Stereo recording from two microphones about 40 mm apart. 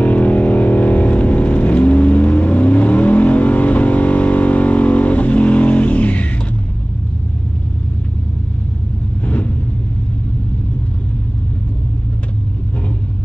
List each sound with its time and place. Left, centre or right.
0.0 s vehicle: left
9.2 s vehicle: left